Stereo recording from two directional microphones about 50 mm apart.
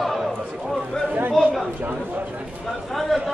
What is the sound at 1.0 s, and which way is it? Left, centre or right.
Chatter, right.